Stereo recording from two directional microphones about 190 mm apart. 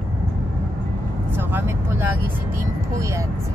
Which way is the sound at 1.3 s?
10° right (ahead or behind).